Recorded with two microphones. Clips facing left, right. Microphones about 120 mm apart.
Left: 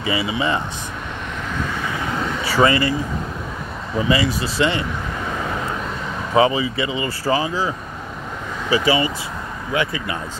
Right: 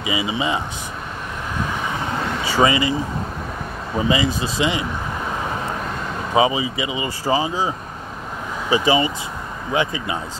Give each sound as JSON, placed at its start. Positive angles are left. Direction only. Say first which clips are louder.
{"t": 0.0, "sound": "speech", "louder": "left 1 dB", "side_deg": -15}
{"t": 2.4, "sound": "speech", "louder": "left 1 dB", "side_deg": -20}
{"t": 4.1, "sound": "speech", "louder": "left 1 dB", "side_deg": -20}
{"t": 6.3, "sound": "speech", "louder": "left 2 dB", "side_deg": -15}